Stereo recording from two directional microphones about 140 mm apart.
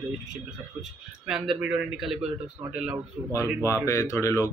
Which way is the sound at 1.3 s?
5° right (ahead or behind).